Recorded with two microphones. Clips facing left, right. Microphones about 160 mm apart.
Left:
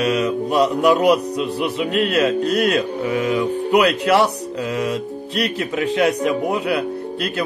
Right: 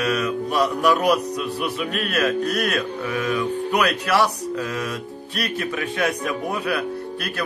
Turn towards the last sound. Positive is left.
turn(degrees=20)  # may be behind; listen again after turning